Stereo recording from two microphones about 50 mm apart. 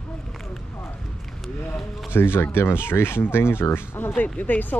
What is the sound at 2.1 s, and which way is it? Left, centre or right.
Speech, left.